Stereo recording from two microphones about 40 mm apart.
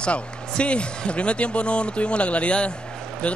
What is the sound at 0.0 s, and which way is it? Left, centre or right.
A man's voice, left.